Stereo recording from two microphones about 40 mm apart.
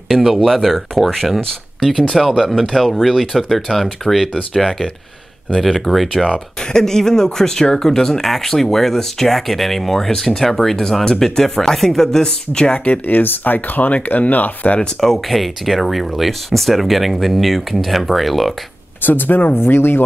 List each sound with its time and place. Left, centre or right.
0.1 s speech: centre
12.7 s speech: left
13.0 s speech: left
15.0 s speech: centre
19.0 s speech: left
19.5 s speech: left